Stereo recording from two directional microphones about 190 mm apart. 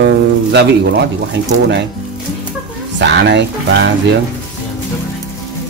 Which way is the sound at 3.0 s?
65° right (ahead or behind).